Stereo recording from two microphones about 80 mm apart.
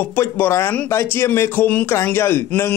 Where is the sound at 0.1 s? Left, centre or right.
Left.